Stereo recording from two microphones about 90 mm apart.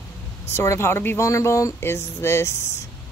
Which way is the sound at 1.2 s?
35° left (ahead or behind).